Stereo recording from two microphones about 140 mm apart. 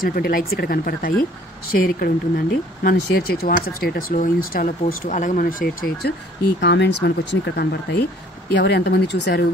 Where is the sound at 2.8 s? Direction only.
90° left.